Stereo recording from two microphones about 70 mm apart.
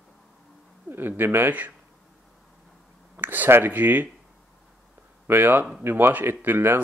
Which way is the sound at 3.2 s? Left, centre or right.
Right.